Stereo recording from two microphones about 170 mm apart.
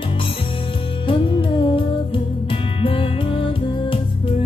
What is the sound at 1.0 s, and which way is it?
Music, 30° left (ahead or behind).